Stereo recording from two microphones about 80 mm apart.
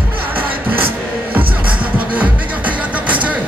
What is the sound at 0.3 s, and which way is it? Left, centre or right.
Music, right.